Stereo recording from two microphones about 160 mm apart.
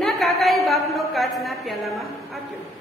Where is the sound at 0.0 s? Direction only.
Centre (ahead or behind).